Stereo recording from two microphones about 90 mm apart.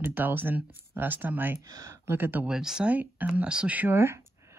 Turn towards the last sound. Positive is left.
turn(degrees=-30)  # may be behind; listen again after turning